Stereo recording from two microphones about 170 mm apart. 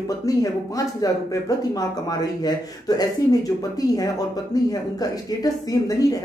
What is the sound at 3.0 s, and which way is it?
Speech, 20° left (ahead or behind).